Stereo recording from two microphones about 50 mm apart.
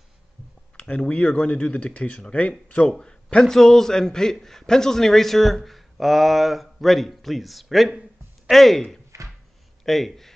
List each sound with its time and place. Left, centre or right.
0.7 s a man's voice: centre
9.1 s a sound: right
9.8 s a man's voice: centre